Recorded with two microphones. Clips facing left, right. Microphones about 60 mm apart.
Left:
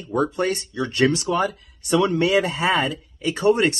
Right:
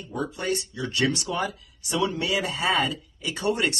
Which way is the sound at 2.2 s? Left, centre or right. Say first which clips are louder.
Left 6 dB; left.